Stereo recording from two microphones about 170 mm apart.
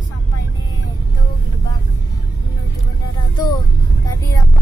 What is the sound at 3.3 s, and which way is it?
Music, 25° left (ahead or behind).